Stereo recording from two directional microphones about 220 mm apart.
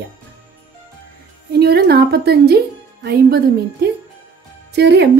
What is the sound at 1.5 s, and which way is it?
Speech, 45° right (ahead or behind).